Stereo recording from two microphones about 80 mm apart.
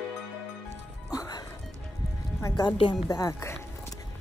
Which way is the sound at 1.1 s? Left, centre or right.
Left.